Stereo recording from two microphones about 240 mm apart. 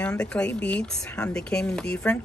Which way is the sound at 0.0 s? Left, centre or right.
Centre.